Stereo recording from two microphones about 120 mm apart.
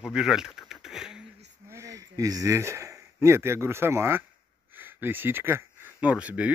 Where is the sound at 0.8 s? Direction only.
5° right (ahead or behind).